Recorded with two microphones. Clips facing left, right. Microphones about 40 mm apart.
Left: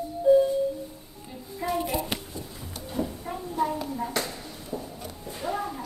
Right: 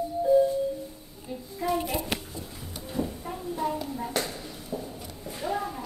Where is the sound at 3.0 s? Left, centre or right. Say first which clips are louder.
Even; centre.